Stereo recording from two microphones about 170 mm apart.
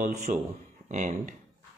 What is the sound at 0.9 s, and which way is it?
Speech, 45° right (ahead or behind).